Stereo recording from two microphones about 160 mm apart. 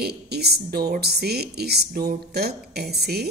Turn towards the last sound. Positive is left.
turn(degrees=-85)